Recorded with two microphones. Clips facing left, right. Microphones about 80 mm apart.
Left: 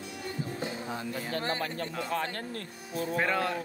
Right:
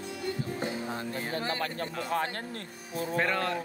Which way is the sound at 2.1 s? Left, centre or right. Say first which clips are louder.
Right 2 dB; right.